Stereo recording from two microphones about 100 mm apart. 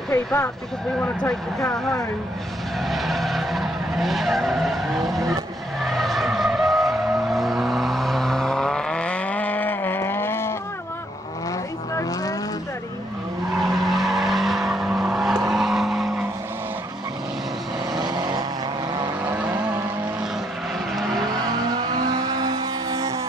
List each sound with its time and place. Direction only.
0.1 s speech: 30° left (ahead or behind)
2.8 s vehicle: centre (ahead or behind); by 10.5 s 25° left (ahead or behind)
11.9 s vehicle: 35° left (ahead or behind)
13.6 s vehicle: centre (ahead or behind)
17.9 s vehicle: 45° right (ahead or behind)
19.2 s vehicle: 15° right (ahead or behind)
20.9 s vehicle: centre (ahead or behind)
21.3 s vehicle: 45° right (ahead or behind)